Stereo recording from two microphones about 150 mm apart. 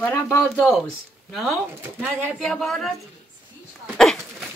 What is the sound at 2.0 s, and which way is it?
Speech, 5° left (ahead or behind).